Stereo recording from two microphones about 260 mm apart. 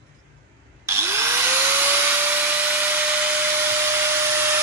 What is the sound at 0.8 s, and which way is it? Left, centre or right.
Tools, centre.